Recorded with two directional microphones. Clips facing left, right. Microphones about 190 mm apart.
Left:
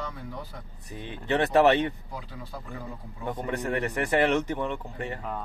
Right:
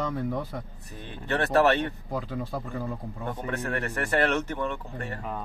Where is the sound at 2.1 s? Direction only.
50° right (ahead or behind).